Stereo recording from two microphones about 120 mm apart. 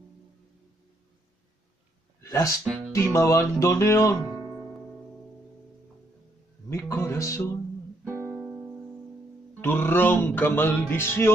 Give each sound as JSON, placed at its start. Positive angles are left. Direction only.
{"t": 2.2, "sound": "speech", "side_deg": 25}
{"t": 2.6, "sound": "speech", "side_deg": 0}
{"t": 2.9, "sound": "music", "side_deg": 25}
{"t": 4.3, "sound": "music", "side_deg": -10}
{"t": 6.7, "sound": "music", "side_deg": 25}
{"t": 8.0, "sound": "music", "side_deg": -20}
{"t": 9.6, "sound": "speech", "side_deg": 20}